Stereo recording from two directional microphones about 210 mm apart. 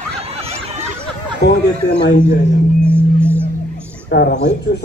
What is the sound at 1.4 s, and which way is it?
Speech, 50° left (ahead or behind).